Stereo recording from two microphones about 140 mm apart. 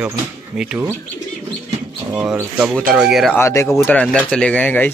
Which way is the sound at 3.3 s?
20° left (ahead or behind).